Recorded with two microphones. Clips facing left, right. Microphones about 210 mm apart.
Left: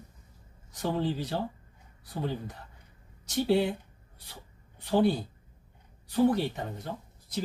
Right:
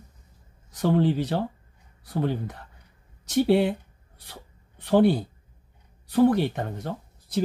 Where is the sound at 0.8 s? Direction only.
70° right (ahead or behind).